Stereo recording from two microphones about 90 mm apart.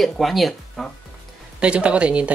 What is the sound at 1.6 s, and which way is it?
Speech, 10° right (ahead or behind).